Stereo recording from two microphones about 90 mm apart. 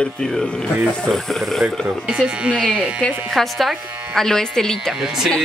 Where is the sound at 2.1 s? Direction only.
10° right (ahead or behind).